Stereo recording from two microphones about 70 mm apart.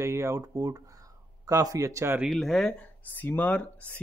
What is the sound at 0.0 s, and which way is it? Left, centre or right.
Speech, right.